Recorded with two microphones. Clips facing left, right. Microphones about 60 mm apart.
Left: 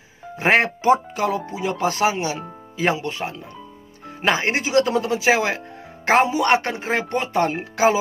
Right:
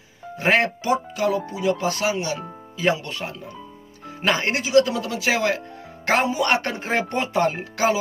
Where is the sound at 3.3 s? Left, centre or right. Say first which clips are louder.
Even; centre.